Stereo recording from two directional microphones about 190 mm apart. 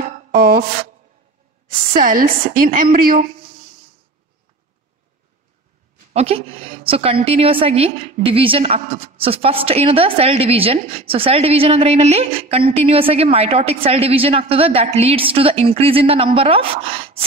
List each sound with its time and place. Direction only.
0.3 s speech: 50° right (ahead or behind)
1.7 s a woman's voice: 50° right (ahead or behind)
6.1 s a woman's voice: 30° right (ahead or behind)